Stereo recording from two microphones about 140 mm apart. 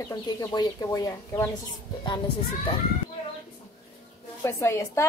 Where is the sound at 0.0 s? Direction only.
25° left (ahead or behind).